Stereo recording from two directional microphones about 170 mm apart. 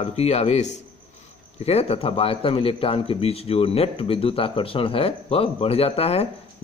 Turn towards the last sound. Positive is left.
turn(degrees=35)  # may be behind; listen again after turning